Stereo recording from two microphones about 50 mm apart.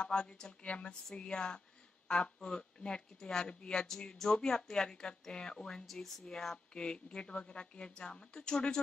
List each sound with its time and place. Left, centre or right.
0.0 s speech: centre